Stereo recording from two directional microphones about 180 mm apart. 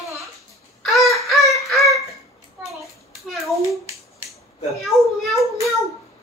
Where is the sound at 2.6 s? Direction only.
Centre (ahead or behind).